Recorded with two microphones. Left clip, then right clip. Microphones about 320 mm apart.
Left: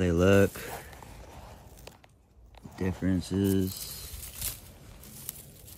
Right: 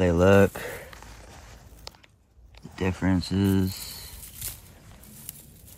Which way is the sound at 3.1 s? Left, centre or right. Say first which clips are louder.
Right 3 dB; centre.